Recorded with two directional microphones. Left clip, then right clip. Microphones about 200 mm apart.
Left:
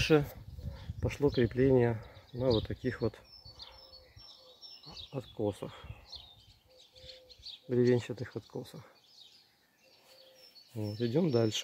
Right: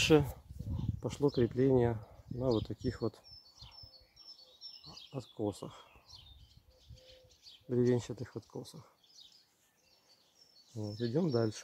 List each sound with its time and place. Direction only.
0.0 s speech: 20° right (ahead or behind); by 3.3 s centre (ahead or behind)
5.6 s speech: centre (ahead or behind)
7.7 s speech: 5° right (ahead or behind)
10.8 s speech: 5° left (ahead or behind)